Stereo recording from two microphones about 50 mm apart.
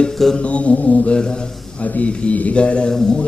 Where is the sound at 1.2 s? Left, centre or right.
Centre.